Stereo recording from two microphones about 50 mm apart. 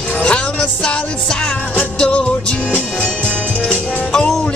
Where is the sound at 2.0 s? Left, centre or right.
Centre.